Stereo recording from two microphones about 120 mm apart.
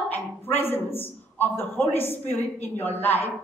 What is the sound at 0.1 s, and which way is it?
A man's voice, 20° left (ahead or behind).